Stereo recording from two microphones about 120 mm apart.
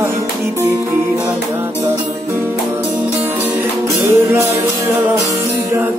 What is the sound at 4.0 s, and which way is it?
Music, 20° right (ahead or behind).